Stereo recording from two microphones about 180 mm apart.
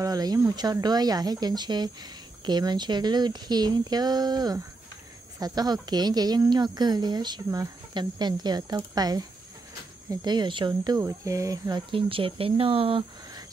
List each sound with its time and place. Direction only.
0.0 s speech: 20° right (ahead or behind)